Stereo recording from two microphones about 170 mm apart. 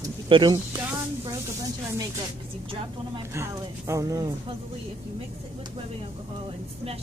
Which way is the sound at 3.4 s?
15° right (ahead or behind).